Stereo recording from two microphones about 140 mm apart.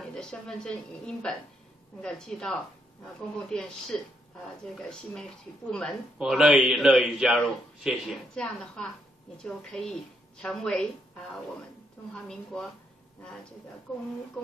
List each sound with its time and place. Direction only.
0.0 s a woman's voice: 5° left (ahead or behind)
12.1 s a man's voice: 5° left (ahead or behind)
13.9 s a man's voice: 5° left (ahead or behind)